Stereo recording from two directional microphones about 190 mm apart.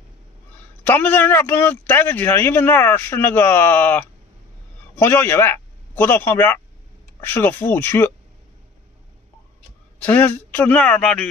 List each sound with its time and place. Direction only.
0.8 s speech: 10° left (ahead or behind)
9.9 s speech: 10° left (ahead or behind)